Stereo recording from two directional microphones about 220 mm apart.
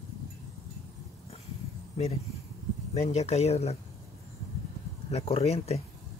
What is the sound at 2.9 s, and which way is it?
Speech, 30° left (ahead or behind).